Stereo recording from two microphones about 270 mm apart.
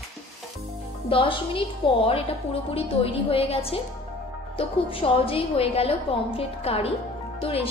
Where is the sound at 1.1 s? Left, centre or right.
Centre.